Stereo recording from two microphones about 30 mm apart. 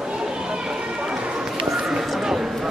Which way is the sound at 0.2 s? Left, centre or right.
Right.